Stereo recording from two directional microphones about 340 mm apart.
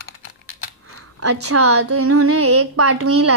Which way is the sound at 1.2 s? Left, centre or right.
Right.